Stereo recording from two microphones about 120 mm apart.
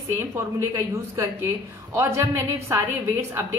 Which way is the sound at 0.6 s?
25° right (ahead or behind).